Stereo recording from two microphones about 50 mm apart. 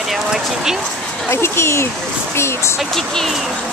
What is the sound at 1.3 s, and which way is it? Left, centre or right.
Speech, left.